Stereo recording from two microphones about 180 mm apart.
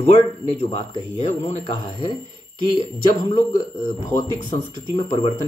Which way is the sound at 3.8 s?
25° left (ahead or behind).